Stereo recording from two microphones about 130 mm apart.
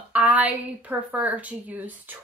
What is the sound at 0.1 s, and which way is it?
A woman's voice, 10° right (ahead or behind).